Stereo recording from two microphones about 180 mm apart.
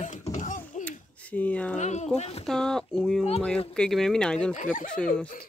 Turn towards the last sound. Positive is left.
turn(degrees=5)  # may be behind; listen again after turning